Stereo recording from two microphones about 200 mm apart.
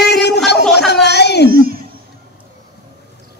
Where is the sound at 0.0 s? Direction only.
55° left (ahead or behind).